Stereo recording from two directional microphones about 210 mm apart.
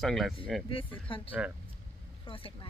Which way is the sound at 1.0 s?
25° left (ahead or behind).